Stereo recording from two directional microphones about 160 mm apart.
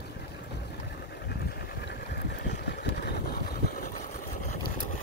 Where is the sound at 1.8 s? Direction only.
85° left.